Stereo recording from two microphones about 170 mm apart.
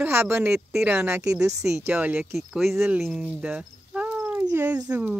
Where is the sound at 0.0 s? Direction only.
15° right (ahead or behind).